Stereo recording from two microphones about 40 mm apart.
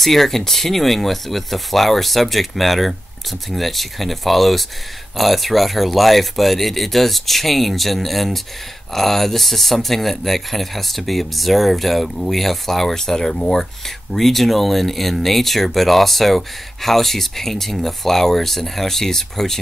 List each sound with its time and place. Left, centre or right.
0.0 s speech: centre